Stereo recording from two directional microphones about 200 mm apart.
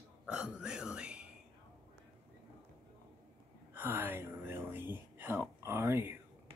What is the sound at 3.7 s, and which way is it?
Whispering, 10° right (ahead or behind).